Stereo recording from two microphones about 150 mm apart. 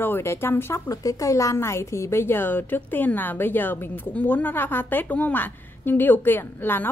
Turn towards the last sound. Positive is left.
turn(degrees=15)  # may be behind; listen again after turning